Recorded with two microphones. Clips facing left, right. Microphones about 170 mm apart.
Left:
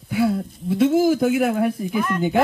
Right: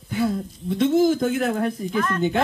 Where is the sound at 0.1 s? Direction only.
10° left (ahead or behind).